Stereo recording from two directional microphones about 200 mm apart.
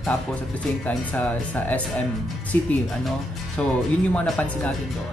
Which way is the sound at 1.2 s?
5° left (ahead or behind).